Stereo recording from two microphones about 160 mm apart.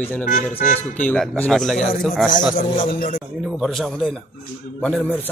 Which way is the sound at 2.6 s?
60° left (ahead or behind).